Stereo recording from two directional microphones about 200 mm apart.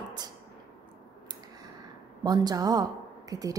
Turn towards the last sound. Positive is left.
turn(degrees=-20)  # may be behind; listen again after turning